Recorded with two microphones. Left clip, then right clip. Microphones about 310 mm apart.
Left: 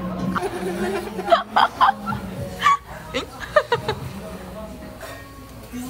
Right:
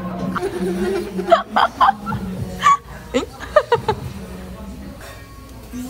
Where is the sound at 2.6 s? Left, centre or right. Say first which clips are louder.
Right 4 dB; centre.